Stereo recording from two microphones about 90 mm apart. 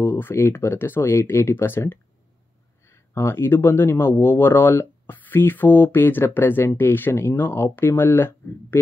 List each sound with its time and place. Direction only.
0.0 s speech: 25° left (ahead or behind)